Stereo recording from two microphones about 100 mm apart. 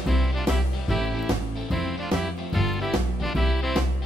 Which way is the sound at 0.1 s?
Centre (ahead or behind).